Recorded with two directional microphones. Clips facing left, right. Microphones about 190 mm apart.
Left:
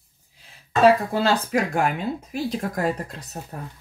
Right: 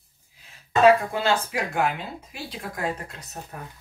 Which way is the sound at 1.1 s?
40° left (ahead or behind).